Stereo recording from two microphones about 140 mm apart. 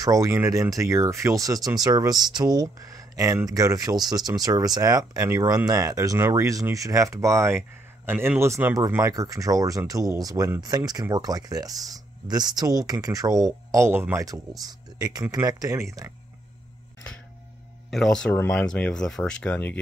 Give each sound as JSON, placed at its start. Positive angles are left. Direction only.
{"t": 0.0, "sound": "speech", "side_deg": -25}
{"t": 17.9, "sound": "speech", "side_deg": 5}
{"t": 18.3, "sound": "speech", "side_deg": 15}